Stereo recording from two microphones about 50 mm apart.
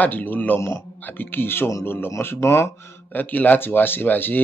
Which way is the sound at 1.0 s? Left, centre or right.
Left.